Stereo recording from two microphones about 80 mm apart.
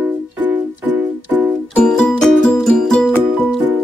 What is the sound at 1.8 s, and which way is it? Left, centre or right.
Music, centre.